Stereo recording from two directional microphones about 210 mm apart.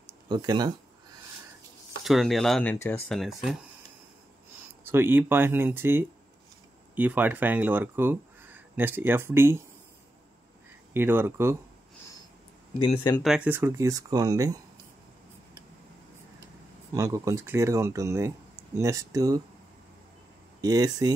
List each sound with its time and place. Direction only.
0.3 s speech: 20° right (ahead or behind)
2.0 s speech: centre (ahead or behind)
4.8 s speech: 10° right (ahead or behind)
10.9 s speech: 10° right (ahead or behind)
12.7 s speech: 25° left (ahead or behind)
13.2 s speech: 5° right (ahead or behind)
16.9 s speech: 15° right (ahead or behind)
20.6 s speech: 20° right (ahead or behind)